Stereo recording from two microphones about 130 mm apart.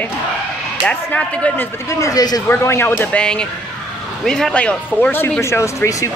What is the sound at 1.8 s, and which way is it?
Speech, 25° left (ahead or behind).